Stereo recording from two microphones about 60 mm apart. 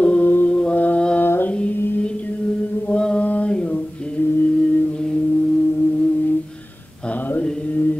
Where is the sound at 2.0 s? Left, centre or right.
Left.